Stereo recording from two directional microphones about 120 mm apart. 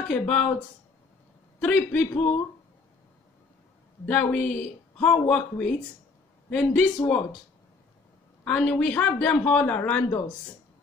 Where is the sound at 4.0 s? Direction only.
10° left (ahead or behind).